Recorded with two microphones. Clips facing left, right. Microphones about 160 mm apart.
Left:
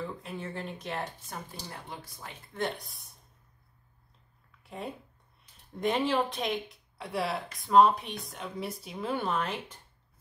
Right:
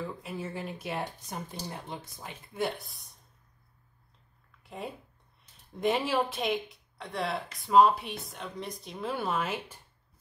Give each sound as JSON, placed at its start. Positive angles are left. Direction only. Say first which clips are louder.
{"t": 0.0, "sound": "speech", "louder": "right 1 dB", "side_deg": -5}
{"t": 1.5, "sound": "speech", "louder": "right 3 dB", "side_deg": -20}
{"t": 2.5, "sound": "speech", "louder": "right 1 dB", "side_deg": -5}
{"t": 4.6, "sound": "speech", "louder": "even", "side_deg": 0}